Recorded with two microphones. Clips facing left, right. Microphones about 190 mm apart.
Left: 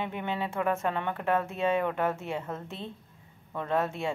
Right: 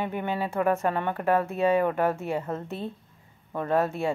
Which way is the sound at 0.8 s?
5° right (ahead or behind).